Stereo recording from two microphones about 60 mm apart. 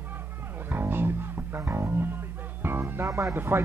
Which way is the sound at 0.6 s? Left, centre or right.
Right.